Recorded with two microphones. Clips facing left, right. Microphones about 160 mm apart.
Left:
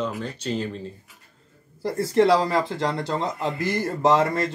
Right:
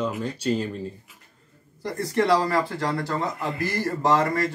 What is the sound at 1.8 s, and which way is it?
Speech, 30° left (ahead or behind).